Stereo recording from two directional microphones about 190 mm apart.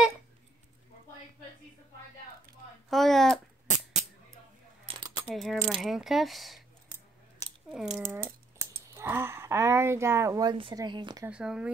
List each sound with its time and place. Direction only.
2.9 s a sound: centre (ahead or behind)
3.6 s beatboxing: 40° right (ahead or behind)
4.8 s coin: 25° right (ahead or behind)
5.3 s speech: centre (ahead or behind)
7.7 s speech: 5° right (ahead or behind); by 11.2 s 25° right (ahead or behind)
11.2 s speech: 5° right (ahead or behind)